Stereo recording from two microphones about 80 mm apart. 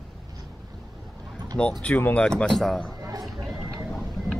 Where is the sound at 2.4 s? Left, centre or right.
Centre.